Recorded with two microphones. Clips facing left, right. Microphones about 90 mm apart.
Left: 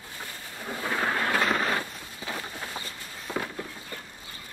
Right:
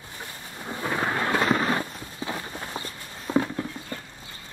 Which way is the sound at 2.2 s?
25° right (ahead or behind).